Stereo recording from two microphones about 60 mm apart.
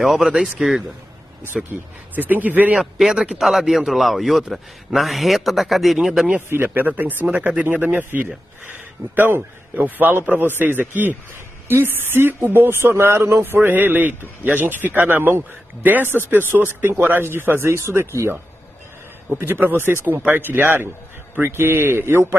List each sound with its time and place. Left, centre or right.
0.0 s a man's voice: centre
2.1 s speech: right
2.7 s a man's voice: centre
3.3 s a man's voice: centre
6.5 s a man's voice: right